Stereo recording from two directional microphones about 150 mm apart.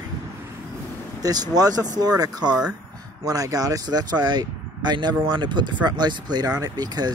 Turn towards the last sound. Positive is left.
turn(degrees=-25)  # may be behind; listen again after turning